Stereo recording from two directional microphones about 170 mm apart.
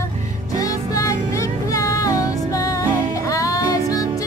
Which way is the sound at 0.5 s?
20° left (ahead or behind).